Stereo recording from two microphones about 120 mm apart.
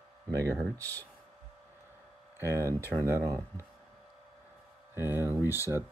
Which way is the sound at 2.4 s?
20° right (ahead or behind).